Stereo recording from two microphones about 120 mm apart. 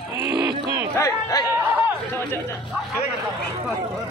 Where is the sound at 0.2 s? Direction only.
25° right (ahead or behind).